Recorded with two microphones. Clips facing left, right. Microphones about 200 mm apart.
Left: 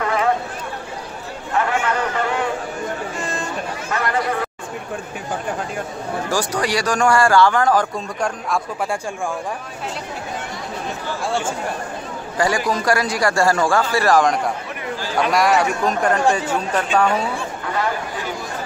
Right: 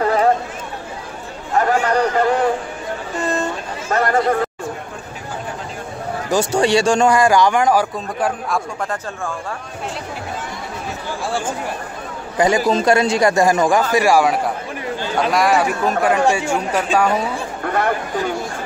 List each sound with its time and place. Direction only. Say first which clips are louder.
0.0 s a sound: right 5 dB; 35° right (ahead or behind)
1.6 s a sound: right 5 dB; 40° right (ahead or behind)
3.9 s chatter: right 5 dB; 40° right (ahead or behind)
6.3 s a man's voice: right 7 dB; 25° right (ahead or behind); by 8.5 s 5° right (ahead or behind)
11.2 s speech: even; centre (ahead or behind)
12.4 s a man's voice: right 4 dB; 20° right (ahead or behind)
17.6 s chatter: right 4 dB; 60° right (ahead or behind)